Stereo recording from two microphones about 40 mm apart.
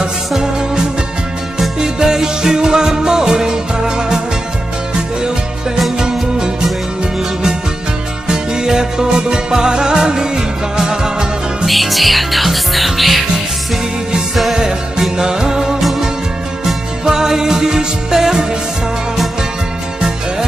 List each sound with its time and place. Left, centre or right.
1.8 s music: centre
5.9 s music: centre
8.3 s music: centre
11.6 s music: centre
14.3 s music: centre
14.6 s music: centre
17.0 s music: centre